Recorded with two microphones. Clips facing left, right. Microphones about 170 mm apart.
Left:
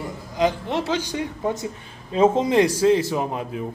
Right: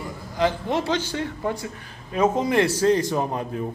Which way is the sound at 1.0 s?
15° left (ahead or behind).